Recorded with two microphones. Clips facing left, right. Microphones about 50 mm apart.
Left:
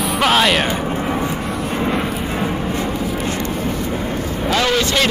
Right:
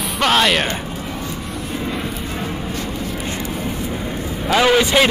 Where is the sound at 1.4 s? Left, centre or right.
Centre.